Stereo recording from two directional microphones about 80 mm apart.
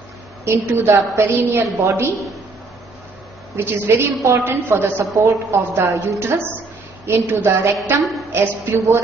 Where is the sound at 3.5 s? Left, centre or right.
Right.